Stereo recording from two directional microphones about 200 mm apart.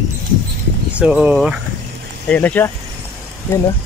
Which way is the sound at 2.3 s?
10° left (ahead or behind).